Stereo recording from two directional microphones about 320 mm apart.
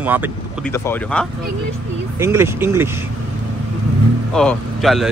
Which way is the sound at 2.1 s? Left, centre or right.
Centre.